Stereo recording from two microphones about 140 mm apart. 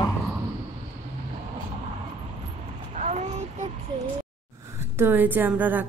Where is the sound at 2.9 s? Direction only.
55° right (ahead or behind).